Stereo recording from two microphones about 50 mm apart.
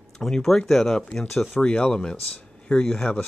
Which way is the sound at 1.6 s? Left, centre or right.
Left.